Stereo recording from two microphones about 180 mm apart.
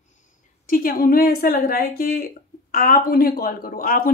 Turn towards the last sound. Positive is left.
turn(degrees=55)  # may be behind; listen again after turning